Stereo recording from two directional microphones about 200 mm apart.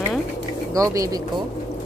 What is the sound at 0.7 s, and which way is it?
Speech, 15° right (ahead or behind).